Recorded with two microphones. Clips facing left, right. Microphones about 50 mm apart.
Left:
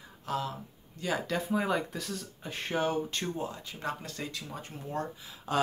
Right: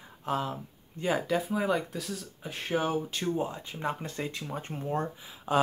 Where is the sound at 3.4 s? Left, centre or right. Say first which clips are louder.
Right 4 dB; right.